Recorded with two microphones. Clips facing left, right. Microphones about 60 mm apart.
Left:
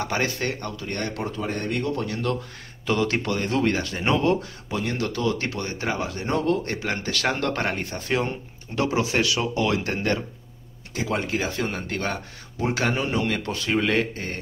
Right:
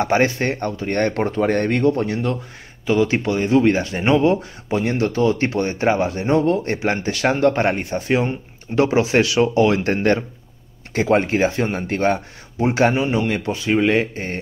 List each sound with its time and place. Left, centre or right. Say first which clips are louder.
0.0 s speech: right 8 dB; right
1.8 s speech: right 8 dB; right
2.9 s a man's voice: right 6 dB; centre
3.7 s speech: right 6 dB; right
11.2 s speech: right 7 dB; right
12.9 s a man's voice: right 5 dB; centre